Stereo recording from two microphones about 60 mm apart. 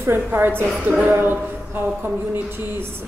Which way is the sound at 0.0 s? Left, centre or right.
Right.